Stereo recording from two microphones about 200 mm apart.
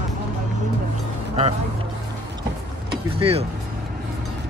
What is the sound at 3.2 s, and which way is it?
Speech, 30° right (ahead or behind).